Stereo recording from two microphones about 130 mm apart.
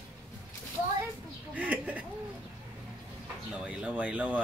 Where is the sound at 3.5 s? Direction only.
10° right (ahead or behind).